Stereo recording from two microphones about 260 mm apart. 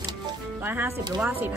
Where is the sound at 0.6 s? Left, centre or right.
Centre.